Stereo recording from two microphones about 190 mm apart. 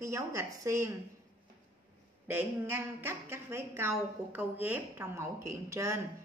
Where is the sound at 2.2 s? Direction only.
10° right (ahead or behind).